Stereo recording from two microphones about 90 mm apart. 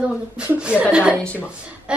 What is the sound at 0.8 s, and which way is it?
Speech, 15° right (ahead or behind).